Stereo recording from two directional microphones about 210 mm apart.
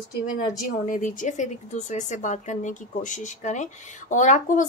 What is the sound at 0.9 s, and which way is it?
Speech, 40° left (ahead or behind).